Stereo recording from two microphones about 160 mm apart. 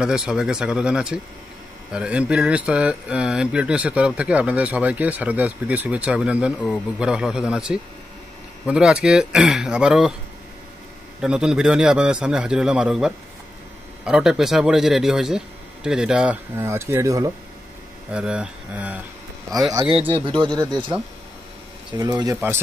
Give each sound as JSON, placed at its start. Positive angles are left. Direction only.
{"t": 0.0, "sound": "speech", "side_deg": -5}
{"t": 11.1, "sound": "speech", "side_deg": -5}
{"t": 16.5, "sound": "speech", "side_deg": -15}
{"t": 18.1, "sound": "speech", "side_deg": -5}
{"t": 19.5, "sound": "speech", "side_deg": -25}
{"t": 19.9, "sound": "speech", "side_deg": -35}
{"t": 21.9, "sound": "speech", "side_deg": -20}